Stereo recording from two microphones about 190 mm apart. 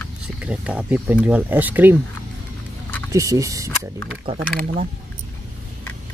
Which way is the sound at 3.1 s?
15° right (ahead or behind).